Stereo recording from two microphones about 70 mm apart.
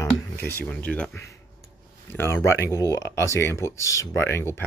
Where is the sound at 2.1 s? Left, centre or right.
Left.